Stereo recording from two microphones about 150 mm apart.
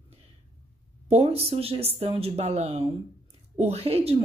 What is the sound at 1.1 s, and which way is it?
A woman's voice, 45° right (ahead or behind).